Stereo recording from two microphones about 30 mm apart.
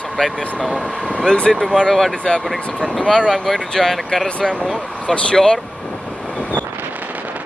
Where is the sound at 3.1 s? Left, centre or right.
Left.